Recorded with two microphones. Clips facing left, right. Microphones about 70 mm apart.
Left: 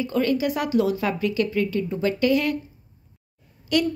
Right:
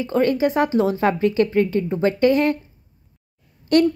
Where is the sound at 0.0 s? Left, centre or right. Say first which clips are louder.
Right 4 dB; right.